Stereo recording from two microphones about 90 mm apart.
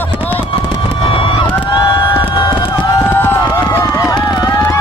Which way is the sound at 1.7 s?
65° left (ahead or behind).